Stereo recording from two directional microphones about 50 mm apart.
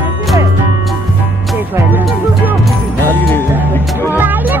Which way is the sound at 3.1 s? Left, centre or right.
Left.